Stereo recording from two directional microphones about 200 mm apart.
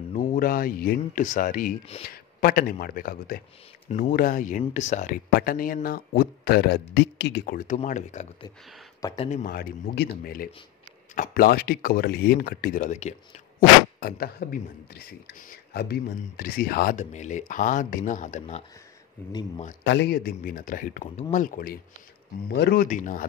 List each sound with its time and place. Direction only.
0.1 s speech: 40° left (ahead or behind)
19.8 s speech: 60° left (ahead or behind); by 23.2 s 40° left (ahead or behind)